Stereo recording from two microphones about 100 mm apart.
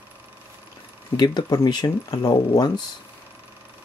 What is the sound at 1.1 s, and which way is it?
Speech, 45° left (ahead or behind).